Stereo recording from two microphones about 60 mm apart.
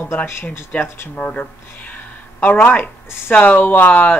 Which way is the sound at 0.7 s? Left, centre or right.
Left.